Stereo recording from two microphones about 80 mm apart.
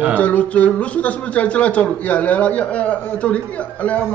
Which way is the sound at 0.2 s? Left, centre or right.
Centre.